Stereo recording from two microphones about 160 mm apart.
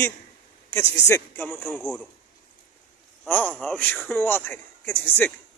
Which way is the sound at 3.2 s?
10° left (ahead or behind).